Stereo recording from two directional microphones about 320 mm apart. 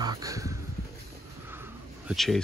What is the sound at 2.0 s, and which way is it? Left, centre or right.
Speech, centre.